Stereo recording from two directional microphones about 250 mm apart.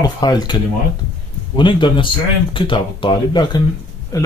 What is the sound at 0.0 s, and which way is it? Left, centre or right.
Speech, centre.